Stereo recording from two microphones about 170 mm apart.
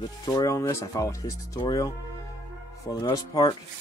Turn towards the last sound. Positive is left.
turn(degrees=25)  # may be behind; listen again after turning